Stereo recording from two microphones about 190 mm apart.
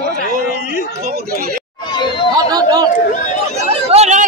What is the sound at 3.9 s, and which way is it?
Speech, 35° right (ahead or behind).